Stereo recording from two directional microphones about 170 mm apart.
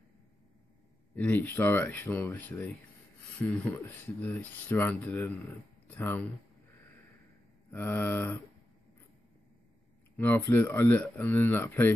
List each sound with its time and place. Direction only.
1.1 s speech: 10° left (ahead or behind)
7.7 s speech: 10° left (ahead or behind)
10.1 s speech: 10° left (ahead or behind)